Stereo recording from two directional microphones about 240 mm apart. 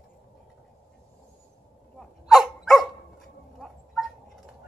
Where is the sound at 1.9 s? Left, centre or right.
Centre.